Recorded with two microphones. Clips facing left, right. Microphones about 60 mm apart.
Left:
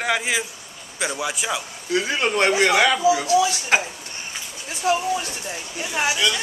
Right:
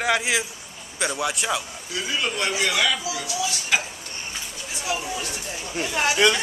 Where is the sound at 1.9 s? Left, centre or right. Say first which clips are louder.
Left 6 dB; left.